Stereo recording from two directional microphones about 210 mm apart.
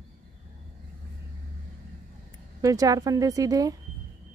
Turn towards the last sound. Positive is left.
turn(degrees=-15)  # may be behind; listen again after turning